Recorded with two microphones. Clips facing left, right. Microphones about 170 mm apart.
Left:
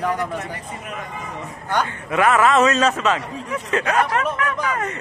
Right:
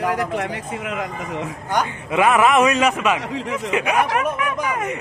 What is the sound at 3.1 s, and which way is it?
Speech, 90° right.